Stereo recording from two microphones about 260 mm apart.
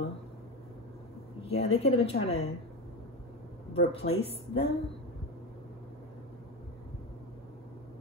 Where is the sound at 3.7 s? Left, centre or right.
Left.